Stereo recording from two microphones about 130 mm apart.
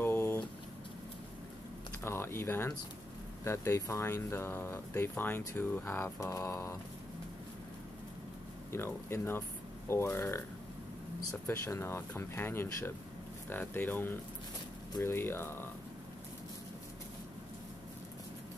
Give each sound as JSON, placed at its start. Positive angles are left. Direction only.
{"t": 0.0, "sound": "a sound", "side_deg": 20}
{"t": 2.0, "sound": "speech", "side_deg": 20}
{"t": 8.7, "sound": "speech", "side_deg": 20}
{"t": 11.4, "sound": "speech", "side_deg": 20}